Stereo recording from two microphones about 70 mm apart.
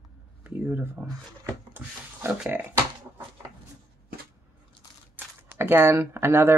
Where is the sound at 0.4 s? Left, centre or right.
Right.